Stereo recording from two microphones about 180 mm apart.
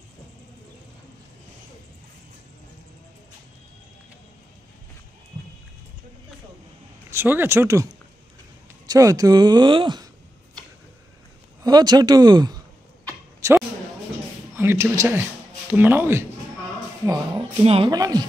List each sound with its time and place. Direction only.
7.1 s speech: 15° right (ahead or behind)
11.6 s speech: 20° right (ahead or behind)
13.4 s a sound: 15° right (ahead or behind)
14.5 s speech: 15° right (ahead or behind)
17.6 s speech: 30° right (ahead or behind)